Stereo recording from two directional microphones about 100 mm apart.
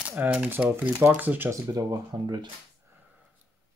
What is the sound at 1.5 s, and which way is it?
Speech, 40° right (ahead or behind).